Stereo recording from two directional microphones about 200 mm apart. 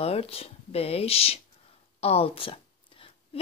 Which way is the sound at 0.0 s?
30° left (ahead or behind).